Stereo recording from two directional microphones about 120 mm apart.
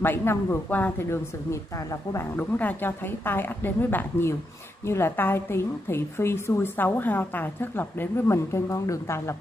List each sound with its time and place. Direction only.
0.0 s a woman's voice: 20° left (ahead or behind)